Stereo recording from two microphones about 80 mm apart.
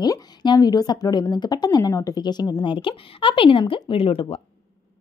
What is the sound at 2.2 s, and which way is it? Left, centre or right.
A woman's voice, left.